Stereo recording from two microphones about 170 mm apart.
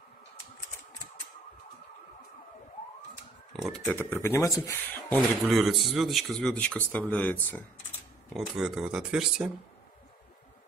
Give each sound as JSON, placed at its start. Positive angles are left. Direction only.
{"t": 3.5, "sound": "a sound", "side_deg": 0}
{"t": 3.9, "sound": "speech", "side_deg": 10}
{"t": 5.1, "sound": "speech", "side_deg": 0}
{"t": 8.3, "sound": "speech", "side_deg": -5}